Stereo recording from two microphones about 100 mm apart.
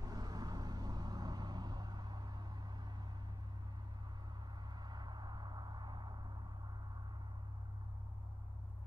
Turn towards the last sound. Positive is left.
turn(degrees=-45)  # may be behind; listen again after turning